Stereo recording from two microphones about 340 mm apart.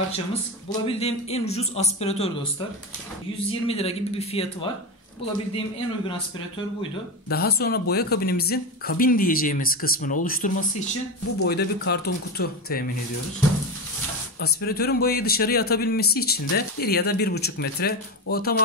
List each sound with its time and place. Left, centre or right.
0.3 s speech: centre
3.6 s speech: centre
7.2 s speech: left
14.4 s speech: left